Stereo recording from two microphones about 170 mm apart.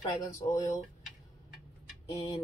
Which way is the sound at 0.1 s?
20° left (ahead or behind).